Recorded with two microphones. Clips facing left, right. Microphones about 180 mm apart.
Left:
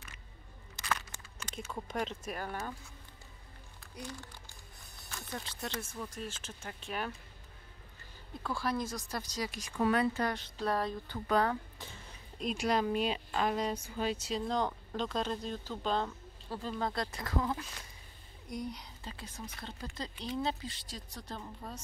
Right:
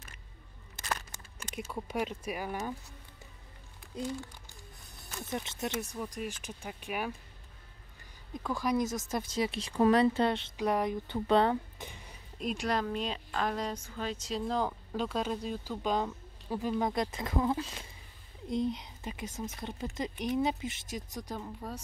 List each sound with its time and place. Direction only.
0.8 s a sound: 35° right (ahead or behind)
1.7 s speech: 10° right (ahead or behind)
5.3 s speech: 20° right (ahead or behind)
8.4 s speech: 15° right (ahead or behind)
12.4 s speech: centre (ahead or behind)